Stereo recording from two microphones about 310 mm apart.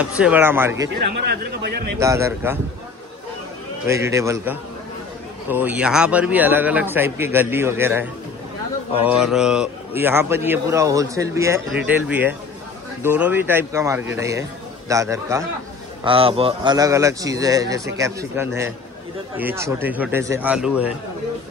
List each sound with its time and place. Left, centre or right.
0.2 s a man's voice: centre
0.9 s speech: right
2.0 s a man's voice: centre
3.8 s a man's voice: centre
9.2 s a man's voice: centre